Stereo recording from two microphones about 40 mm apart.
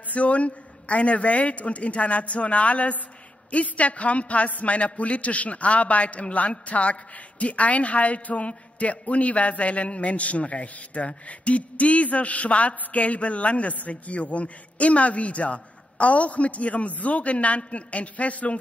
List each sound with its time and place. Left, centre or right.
0.1 s a woman's voice: left